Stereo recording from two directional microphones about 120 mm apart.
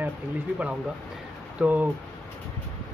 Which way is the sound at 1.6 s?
15° right (ahead or behind).